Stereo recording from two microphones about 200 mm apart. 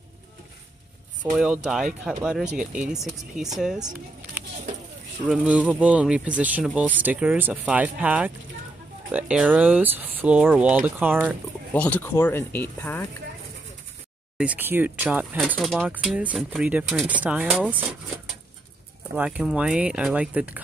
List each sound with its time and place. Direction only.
1.3 s speech: 5° right (ahead or behind)
2.6 s speech: 40° right (ahead or behind)
2.9 s speech: centre (ahead or behind)
5.3 s speech: 5° right (ahead or behind)
11.7 s speech: 10° left (ahead or behind)
14.4 s speech: 10° right (ahead or behind)
19.1 s speech: 5° right (ahead or behind)